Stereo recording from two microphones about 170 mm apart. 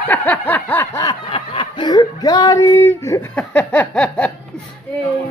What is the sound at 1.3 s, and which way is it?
Speech, 30° left (ahead or behind).